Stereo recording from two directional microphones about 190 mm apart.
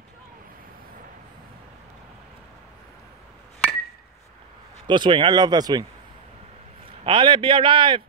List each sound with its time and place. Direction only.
4.8 s speech: 25° right (ahead or behind)
7.1 s speech: 25° right (ahead or behind)